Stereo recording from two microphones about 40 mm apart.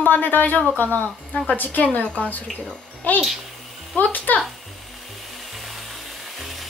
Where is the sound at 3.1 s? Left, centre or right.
Left.